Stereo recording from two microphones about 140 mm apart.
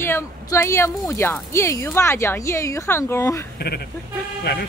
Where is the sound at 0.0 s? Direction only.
20° left (ahead or behind).